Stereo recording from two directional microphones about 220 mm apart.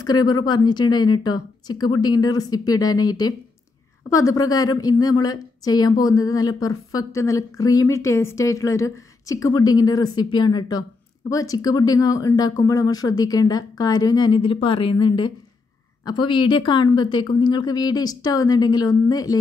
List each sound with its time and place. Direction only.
0.0 s a woman's voice: 20° left (ahead or behind)